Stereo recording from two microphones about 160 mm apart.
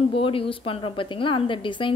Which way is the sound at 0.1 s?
35° left (ahead or behind).